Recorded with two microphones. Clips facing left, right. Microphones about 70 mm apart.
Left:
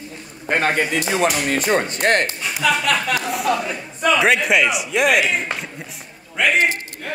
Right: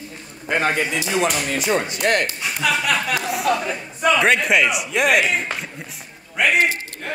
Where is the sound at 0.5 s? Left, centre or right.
Left.